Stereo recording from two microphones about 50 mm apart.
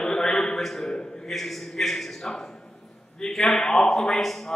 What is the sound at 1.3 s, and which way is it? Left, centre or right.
A man's voice, centre.